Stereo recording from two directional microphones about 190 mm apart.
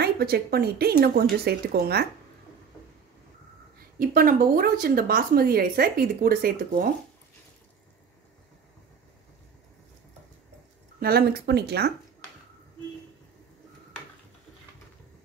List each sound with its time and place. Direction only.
0.0 s speech: 55° right (ahead or behind)
4.0 s a woman's voice: 50° right (ahead or behind)
11.0 s speech: 55° right (ahead or behind)